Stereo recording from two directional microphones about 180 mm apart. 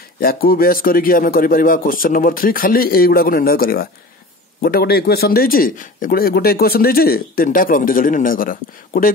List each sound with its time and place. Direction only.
0.2 s speech: 55° left (ahead or behind)